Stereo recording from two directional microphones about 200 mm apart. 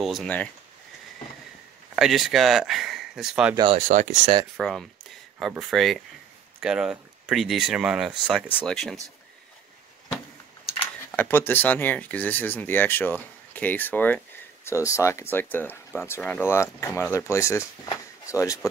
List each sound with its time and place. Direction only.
0.0 s speech: centre (ahead or behind)
2.0 s speech: centre (ahead or behind)
3.5 s speech: 25° right (ahead or behind)
3.8 s speech: 40° right (ahead or behind)
4.6 s speech: centre (ahead or behind)
11.1 s speech: 10° left (ahead or behind)